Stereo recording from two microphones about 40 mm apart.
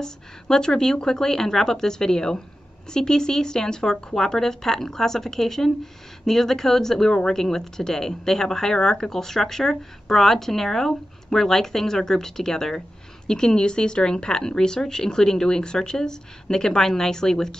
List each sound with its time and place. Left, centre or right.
0.0 s speech: centre